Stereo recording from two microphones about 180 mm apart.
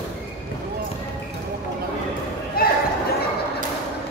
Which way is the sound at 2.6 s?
55° left (ahead or behind).